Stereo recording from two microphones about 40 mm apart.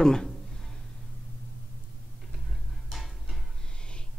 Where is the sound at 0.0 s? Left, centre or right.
Centre.